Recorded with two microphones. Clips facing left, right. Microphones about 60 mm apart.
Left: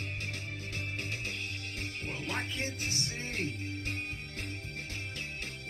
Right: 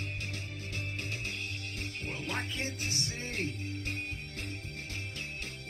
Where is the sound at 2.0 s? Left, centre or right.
Left.